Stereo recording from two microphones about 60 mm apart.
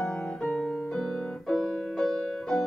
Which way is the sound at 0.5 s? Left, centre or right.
Centre.